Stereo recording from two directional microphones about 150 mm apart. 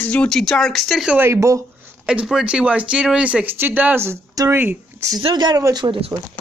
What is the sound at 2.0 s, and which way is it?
Speech, 5° right (ahead or behind).